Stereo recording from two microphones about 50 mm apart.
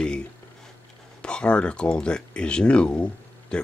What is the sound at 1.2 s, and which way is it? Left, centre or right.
Speech, centre.